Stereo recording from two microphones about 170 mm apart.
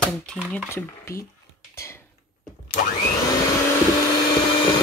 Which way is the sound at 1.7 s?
15° left (ahead or behind).